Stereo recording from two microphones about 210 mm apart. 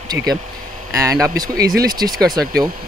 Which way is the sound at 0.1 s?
20° right (ahead or behind).